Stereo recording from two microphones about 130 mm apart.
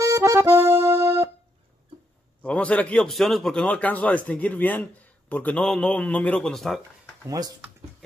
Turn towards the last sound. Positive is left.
turn(degrees=-30)  # may be behind; listen again after turning